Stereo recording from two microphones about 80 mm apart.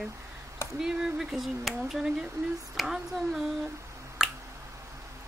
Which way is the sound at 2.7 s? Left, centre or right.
Centre.